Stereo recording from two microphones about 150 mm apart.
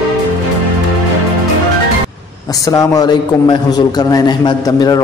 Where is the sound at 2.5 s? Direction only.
25° left (ahead or behind).